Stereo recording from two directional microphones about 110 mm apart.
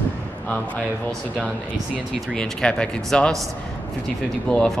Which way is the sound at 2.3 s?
5° left (ahead or behind).